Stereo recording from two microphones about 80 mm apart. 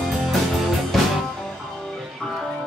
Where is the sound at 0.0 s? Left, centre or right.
Centre.